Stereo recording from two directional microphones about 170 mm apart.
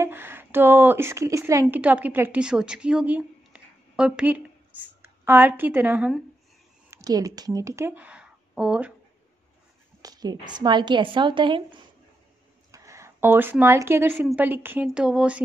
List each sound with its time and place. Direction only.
0.0 s a woman's voice: 15° right (ahead or behind)
6.9 s speech: 20° right (ahead or behind)
10.0 s a woman's voice: 25° right (ahead or behind)
12.7 s a woman's voice: 20° right (ahead or behind)